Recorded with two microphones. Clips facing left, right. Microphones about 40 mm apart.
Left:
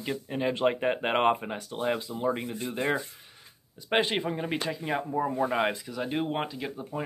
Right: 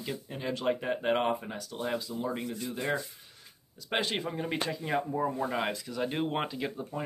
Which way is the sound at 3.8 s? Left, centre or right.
Left.